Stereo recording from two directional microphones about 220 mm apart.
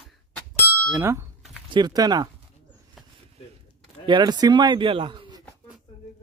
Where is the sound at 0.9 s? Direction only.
10° right (ahead or behind).